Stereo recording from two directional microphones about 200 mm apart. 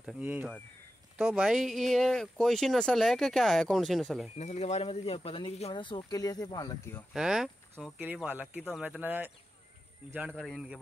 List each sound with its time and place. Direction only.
0.0 s speech: 10° right (ahead or behind)
4.4 s speech: 35° left (ahead or behind); by 7.1 s 15° left (ahead or behind)
7.2 s speech: centre (ahead or behind)
10.2 s speech: 5° left (ahead or behind)